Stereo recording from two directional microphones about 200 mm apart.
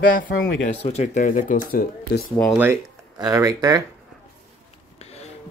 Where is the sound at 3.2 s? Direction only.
15° right (ahead or behind).